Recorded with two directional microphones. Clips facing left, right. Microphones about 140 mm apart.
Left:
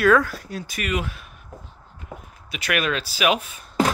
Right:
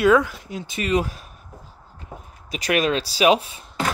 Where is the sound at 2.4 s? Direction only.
35° right (ahead or behind).